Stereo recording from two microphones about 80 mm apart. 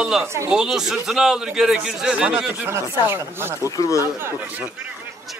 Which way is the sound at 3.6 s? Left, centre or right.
Left.